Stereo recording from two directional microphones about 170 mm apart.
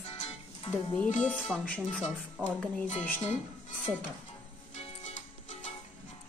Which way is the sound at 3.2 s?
45° left (ahead or behind).